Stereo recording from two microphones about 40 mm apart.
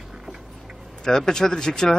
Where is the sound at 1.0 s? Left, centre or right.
Centre.